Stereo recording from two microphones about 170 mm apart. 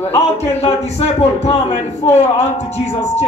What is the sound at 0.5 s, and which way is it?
A man's voice, 40° left (ahead or behind).